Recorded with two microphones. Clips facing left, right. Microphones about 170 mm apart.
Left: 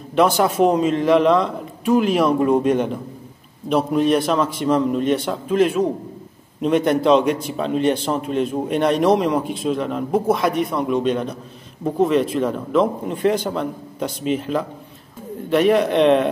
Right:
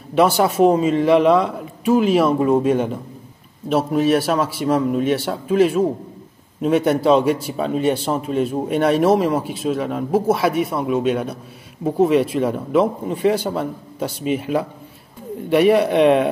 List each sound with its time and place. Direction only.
0.4 s a man's voice: 5° right (ahead or behind)